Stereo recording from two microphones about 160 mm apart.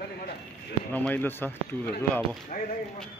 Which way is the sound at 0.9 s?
10° left (ahead or behind).